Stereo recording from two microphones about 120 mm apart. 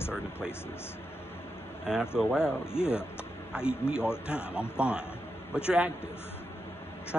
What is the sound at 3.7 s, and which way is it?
A man's voice, 10° right (ahead or behind).